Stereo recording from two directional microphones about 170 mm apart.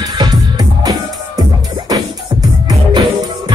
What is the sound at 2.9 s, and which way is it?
Music, 25° right (ahead or behind).